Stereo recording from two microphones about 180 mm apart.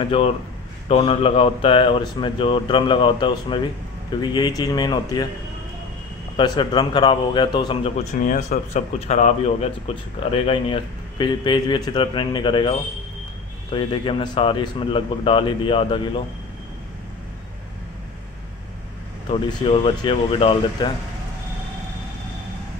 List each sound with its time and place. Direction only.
0.8 s a man's voice: 30° left (ahead or behind)
6.3 s a man's voice: 25° left (ahead or behind)
19.2 s speech: 30° left (ahead or behind)